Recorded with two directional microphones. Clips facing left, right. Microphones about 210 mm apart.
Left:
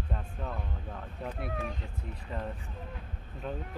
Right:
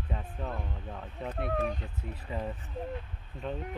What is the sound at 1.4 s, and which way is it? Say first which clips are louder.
Speech: right 8 dB; 40° right (ahead or behind).